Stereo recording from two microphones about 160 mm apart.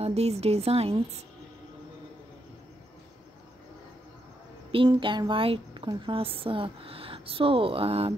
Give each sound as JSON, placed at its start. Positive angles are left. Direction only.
{"t": 0.0, "sound": "speech", "side_deg": -40}
{"t": 4.7, "sound": "speech", "side_deg": -30}